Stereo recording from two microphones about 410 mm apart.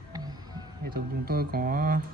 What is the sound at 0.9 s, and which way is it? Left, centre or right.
Speech, right.